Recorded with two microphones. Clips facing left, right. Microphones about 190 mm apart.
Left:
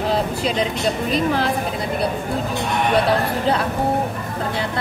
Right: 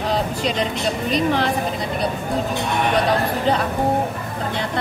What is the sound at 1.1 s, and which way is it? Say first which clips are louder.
Music: right 2 dB; 5° left (ahead or behind).